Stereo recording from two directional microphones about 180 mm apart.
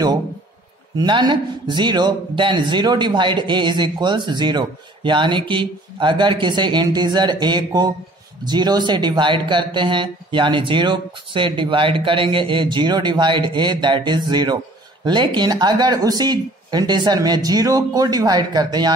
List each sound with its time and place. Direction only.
0.9 s speech: 25° right (ahead or behind)